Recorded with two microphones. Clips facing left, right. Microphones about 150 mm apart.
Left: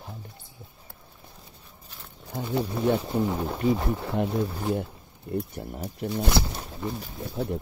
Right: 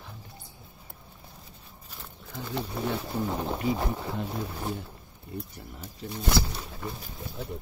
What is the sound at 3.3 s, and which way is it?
Speech, 10° right (ahead or behind).